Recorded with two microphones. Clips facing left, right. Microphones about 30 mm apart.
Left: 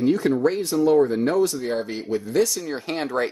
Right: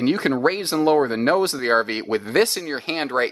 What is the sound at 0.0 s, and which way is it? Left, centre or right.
Speech, right.